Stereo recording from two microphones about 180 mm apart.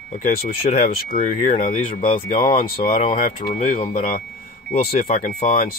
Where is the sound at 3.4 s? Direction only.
40° left (ahead or behind).